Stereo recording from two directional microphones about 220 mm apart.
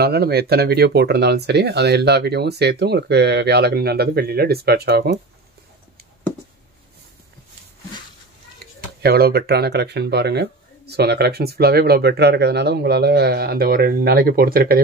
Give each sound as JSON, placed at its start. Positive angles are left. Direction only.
{"t": 0.0, "sound": "speech", "side_deg": -45}
{"t": 9.0, "sound": "speech", "side_deg": -45}